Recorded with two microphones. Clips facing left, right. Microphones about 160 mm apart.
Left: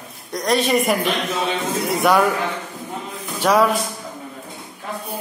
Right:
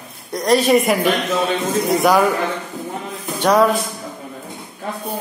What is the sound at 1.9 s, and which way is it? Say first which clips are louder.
Speech: right 1 dB; centre (ahead or behind).